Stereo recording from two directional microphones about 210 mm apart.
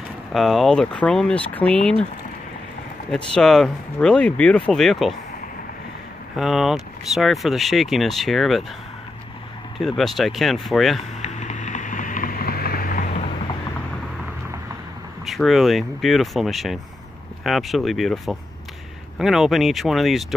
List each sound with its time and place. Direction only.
0.3 s speech: centre (ahead or behind)
3.1 s speech: 5° left (ahead or behind)
6.3 s speech: centre (ahead or behind)
9.8 s speech: centre (ahead or behind)
11.1 s vehicle: 35° left (ahead or behind)
15.2 s speech: centre (ahead or behind)